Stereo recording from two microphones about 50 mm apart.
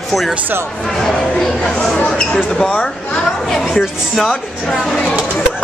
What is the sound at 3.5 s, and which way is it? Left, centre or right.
Speech, centre.